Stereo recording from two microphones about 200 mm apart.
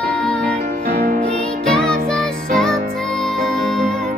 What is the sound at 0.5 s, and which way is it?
Music, 45° right (ahead or behind).